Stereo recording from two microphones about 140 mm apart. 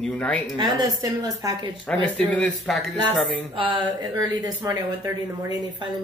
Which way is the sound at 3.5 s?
35° right (ahead or behind).